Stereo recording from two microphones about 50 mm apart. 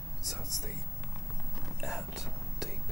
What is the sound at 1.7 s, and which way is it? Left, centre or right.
Whispering, centre.